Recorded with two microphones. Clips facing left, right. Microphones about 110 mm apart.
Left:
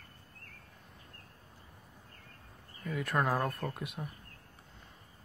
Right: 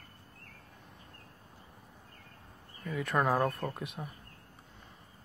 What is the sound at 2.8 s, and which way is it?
Speech, centre (ahead or behind).